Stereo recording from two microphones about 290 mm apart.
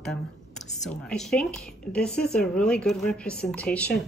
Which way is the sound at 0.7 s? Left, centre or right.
Centre.